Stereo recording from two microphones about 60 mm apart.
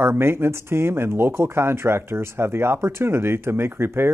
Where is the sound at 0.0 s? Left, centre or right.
Right.